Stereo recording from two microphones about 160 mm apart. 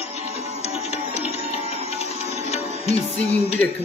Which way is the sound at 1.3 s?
40° left (ahead or behind).